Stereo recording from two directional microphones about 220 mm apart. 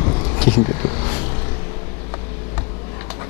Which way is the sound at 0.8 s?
20° left (ahead or behind).